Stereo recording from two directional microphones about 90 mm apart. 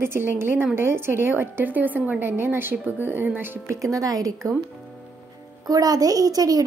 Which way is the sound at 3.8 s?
40° right (ahead or behind).